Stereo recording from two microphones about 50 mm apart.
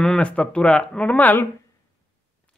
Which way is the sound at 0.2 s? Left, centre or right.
Left.